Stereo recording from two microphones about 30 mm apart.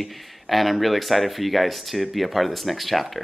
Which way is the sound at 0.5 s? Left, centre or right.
Centre.